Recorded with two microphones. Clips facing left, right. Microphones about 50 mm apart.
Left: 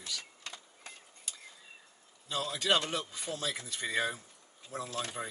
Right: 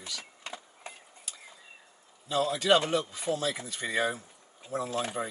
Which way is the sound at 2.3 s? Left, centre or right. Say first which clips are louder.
Right 6 dB; centre.